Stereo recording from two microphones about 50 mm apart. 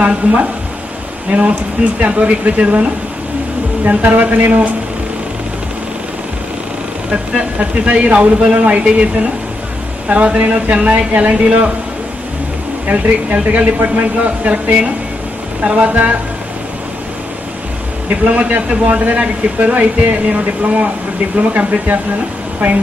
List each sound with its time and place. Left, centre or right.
0.0 s a man's voice: right
3.8 s speech: right
7.1 s a man's voice: right
10.0 s a man's voice: right
12.8 s a man's voice: right
18.2 s a man's voice: right